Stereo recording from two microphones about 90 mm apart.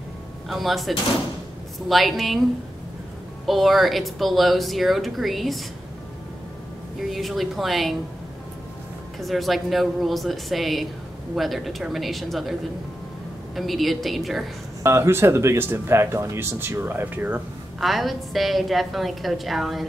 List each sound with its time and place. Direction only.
0.5 s speech: centre (ahead or behind)
3.4 s speech: centre (ahead or behind)
7.0 s speech: centre (ahead or behind)
9.2 s speech: centre (ahead or behind)
13.6 s speech: centre (ahead or behind)
14.8 s speech: 30° right (ahead or behind)
17.7 s speech: centre (ahead or behind)